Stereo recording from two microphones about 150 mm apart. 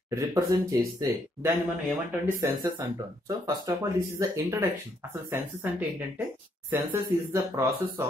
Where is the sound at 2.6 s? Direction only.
25° right (ahead or behind).